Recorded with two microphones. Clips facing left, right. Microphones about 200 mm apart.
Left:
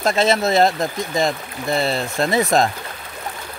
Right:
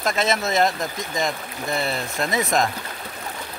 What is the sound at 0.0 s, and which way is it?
Speech, 30° left (ahead or behind).